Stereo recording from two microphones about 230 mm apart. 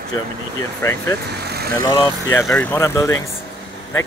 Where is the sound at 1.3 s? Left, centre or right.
Right.